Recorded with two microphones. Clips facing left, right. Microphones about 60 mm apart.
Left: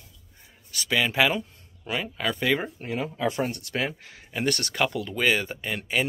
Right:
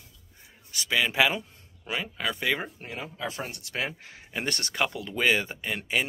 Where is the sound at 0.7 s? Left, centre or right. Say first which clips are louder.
Left 1 dB; centre.